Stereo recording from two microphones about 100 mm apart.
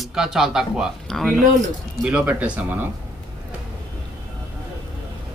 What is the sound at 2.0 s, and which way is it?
Speech, 15° right (ahead or behind).